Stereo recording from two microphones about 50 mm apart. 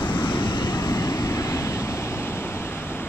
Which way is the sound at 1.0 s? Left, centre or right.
Left.